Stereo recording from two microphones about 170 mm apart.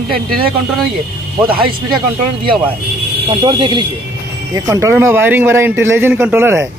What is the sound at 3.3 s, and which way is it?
Speech, 25° right (ahead or behind).